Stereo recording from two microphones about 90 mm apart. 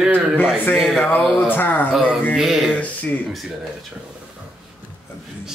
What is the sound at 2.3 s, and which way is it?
Speech, 5° right (ahead or behind).